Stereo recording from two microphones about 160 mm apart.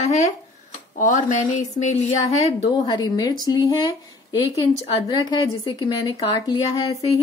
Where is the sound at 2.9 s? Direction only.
25° left (ahead or behind).